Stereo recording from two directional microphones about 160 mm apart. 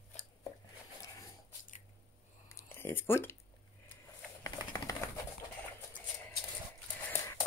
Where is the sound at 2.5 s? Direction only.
15° left (ahead or behind).